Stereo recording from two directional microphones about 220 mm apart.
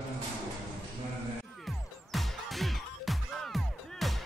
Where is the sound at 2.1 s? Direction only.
Centre (ahead or behind).